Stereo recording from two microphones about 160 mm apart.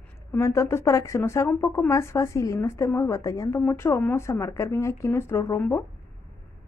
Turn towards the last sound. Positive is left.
turn(degrees=15)  # may be behind; listen again after turning